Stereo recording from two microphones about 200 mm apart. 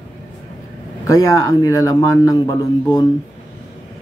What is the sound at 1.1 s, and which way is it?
A man's voice, 15° left (ahead or behind).